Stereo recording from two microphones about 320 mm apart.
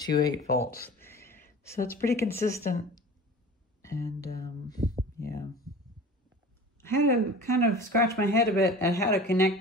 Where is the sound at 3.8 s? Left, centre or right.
Centre.